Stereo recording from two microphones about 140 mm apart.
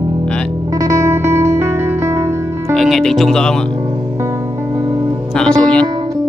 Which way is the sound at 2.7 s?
Centre (ahead or behind).